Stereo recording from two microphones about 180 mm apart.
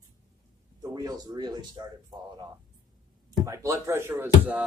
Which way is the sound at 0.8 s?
20° right (ahead or behind).